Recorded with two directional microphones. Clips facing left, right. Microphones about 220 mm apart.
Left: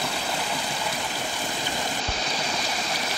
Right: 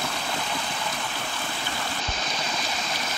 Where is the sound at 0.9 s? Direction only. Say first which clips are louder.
Left 2 dB; 15° left (ahead or behind).